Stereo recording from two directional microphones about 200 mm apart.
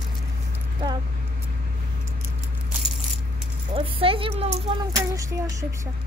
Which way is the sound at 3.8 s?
25° right (ahead or behind).